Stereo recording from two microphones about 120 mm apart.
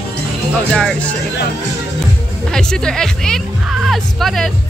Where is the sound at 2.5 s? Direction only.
5° left (ahead or behind).